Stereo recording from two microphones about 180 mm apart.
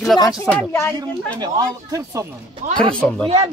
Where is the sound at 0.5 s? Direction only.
10° left (ahead or behind).